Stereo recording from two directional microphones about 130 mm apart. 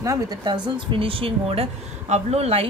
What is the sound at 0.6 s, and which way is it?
Speech, 40° right (ahead or behind).